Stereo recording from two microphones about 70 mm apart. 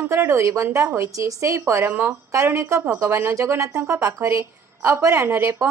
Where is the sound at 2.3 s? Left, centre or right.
Right.